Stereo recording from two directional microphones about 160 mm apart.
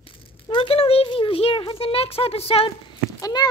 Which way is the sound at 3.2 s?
25° left (ahead or behind).